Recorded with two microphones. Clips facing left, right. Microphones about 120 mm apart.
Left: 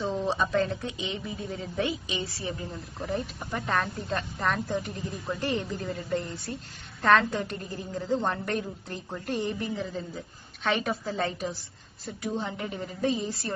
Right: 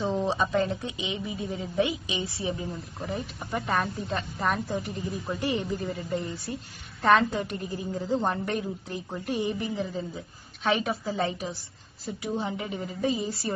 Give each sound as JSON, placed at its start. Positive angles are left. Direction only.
{"t": 0.0, "sound": "a woman's voice", "side_deg": -15}
{"t": 3.0, "sound": "a woman's voice", "side_deg": 0}